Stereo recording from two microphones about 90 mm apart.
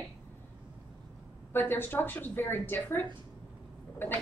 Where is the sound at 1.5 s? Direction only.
25° left (ahead or behind).